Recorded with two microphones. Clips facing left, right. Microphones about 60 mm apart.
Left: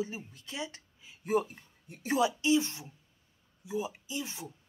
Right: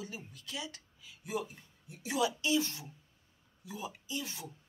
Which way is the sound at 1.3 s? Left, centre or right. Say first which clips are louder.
Left 8 dB; left.